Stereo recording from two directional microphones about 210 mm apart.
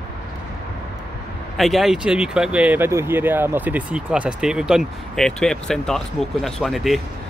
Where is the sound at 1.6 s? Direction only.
Centre (ahead or behind).